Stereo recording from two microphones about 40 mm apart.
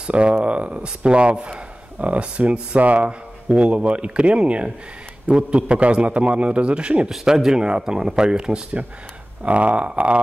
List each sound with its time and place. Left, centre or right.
0.0 s a man's voice: right
7.1 s a man's voice: centre
8.8 s speech: right